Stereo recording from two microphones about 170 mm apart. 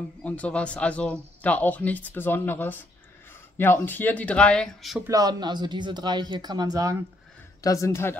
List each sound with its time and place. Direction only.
0.2 s speech: 5° left (ahead or behind)
5.0 s speech: 20° right (ahead or behind)
7.6 s speech: 20° left (ahead or behind)